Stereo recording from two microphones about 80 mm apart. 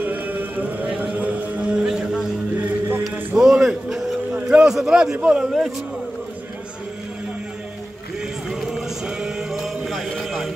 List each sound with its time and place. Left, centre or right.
0.0 s music: right
2.5 s music: right
3.3 s a sound: centre
4.3 s a sound: centre
4.6 s a man's voice: centre
8.5 s music: centre